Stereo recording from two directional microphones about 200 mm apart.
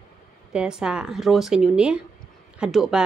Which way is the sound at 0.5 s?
5° right (ahead or behind).